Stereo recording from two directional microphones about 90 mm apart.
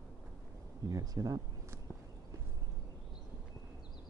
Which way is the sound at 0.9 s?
40° right (ahead or behind).